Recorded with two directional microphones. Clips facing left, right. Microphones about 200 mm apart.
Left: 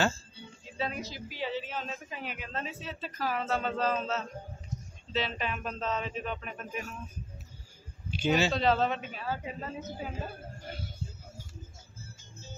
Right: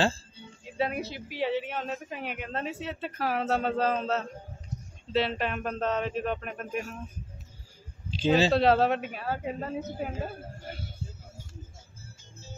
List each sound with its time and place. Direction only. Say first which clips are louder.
0.7 s speech: right 5 dB; 60° right (ahead or behind)
8.3 s speech: right 4 dB; 35° right (ahead or behind)
8.5 s speech: right 5 dB; 65° right (ahead or behind)